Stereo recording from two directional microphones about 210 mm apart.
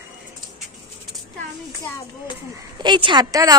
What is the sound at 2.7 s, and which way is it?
Speech, 20° right (ahead or behind).